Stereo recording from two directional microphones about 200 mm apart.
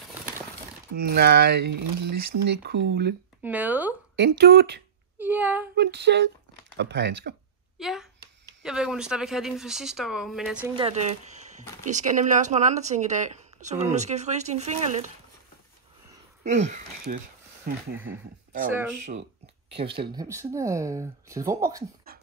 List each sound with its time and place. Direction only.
0.9 s speech: 50° right (ahead or behind)
3.4 s speech: 10° right (ahead or behind)
4.2 s speech: 55° right (ahead or behind)
5.2 s speech: 10° right (ahead or behind)
5.8 s speech: 55° right (ahead or behind)
7.8 s speech: centre (ahead or behind)
10.8 s speech: 30° right (ahead or behind)
16.4 s speech: 35° right (ahead or behind)
19.7 s speech: 25° right (ahead or behind)